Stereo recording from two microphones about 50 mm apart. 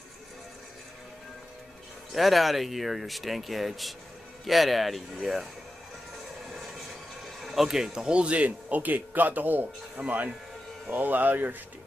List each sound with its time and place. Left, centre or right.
2.1 s speech: centre
6.5 s train: centre
7.4 s speech: centre; by 9.7 s right
9.9 s speech: right